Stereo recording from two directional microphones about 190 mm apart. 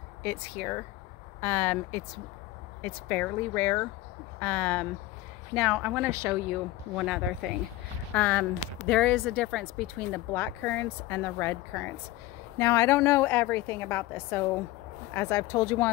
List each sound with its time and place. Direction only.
0.2 s speech: 10° left (ahead or behind)
5.5 s speech: 5° right (ahead or behind)
7.0 s speech: centre (ahead or behind); by 15.9 s 15° left (ahead or behind)